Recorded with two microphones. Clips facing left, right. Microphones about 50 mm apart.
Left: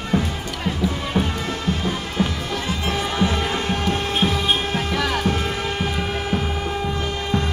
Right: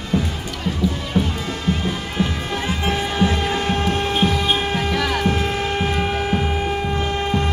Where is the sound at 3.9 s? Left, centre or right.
Right.